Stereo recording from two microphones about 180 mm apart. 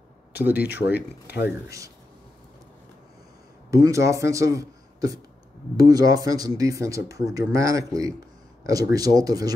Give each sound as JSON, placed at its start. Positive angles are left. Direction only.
{"t": 0.3, "sound": "speech", "side_deg": -10}
{"t": 0.7, "sound": "speech", "side_deg": 70}
{"t": 3.7, "sound": "speech", "side_deg": -15}